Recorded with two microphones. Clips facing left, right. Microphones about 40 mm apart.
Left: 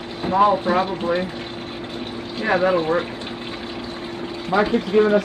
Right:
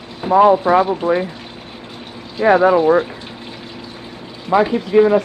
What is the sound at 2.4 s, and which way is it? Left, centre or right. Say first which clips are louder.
Speech: right 7 dB; right.